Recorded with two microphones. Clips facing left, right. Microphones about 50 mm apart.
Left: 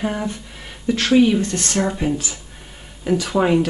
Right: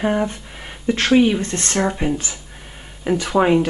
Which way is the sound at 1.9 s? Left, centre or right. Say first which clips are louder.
Even; centre.